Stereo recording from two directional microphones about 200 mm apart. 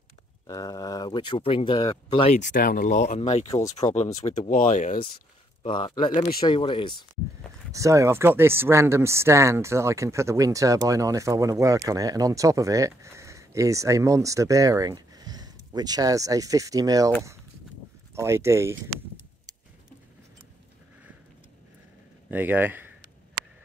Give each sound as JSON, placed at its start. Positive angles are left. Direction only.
{"t": 0.5, "sound": "speech", "side_deg": 15}
{"t": 3.4, "sound": "speech", "side_deg": 15}
{"t": 3.9, "sound": "speech", "side_deg": 35}
{"t": 5.6, "sound": "speech", "side_deg": 25}
{"t": 7.7, "sound": "speech", "side_deg": -15}
{"t": 18.1, "sound": "speech", "side_deg": -15}
{"t": 22.3, "sound": "speech", "side_deg": -10}